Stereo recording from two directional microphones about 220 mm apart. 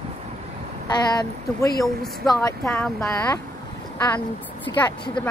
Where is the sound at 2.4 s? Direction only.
10° left (ahead or behind).